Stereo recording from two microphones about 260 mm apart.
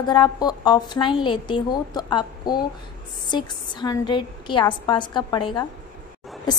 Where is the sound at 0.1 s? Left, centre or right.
Centre.